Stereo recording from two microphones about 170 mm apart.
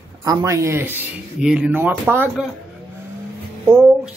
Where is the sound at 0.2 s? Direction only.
20° right (ahead or behind).